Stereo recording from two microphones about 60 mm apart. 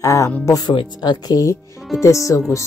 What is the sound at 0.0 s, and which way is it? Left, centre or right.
Speech, left.